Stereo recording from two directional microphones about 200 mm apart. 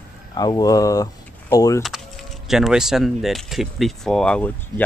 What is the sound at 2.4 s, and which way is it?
Speech, centre (ahead or behind).